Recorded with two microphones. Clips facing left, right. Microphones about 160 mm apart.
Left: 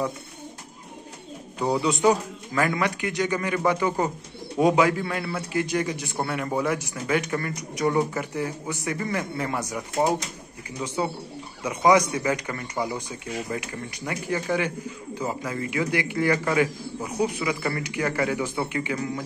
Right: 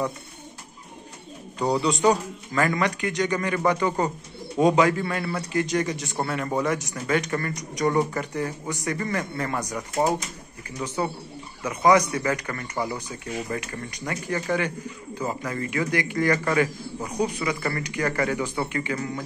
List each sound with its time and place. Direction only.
1.6 s a man's voice: 15° left (ahead or behind)